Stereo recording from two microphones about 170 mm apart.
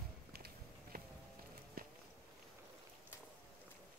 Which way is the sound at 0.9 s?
60° right (ahead or behind).